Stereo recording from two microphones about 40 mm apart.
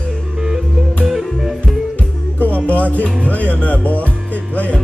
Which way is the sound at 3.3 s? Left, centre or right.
Left.